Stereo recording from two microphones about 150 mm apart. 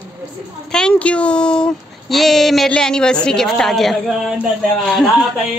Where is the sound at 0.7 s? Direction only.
5° left (ahead or behind).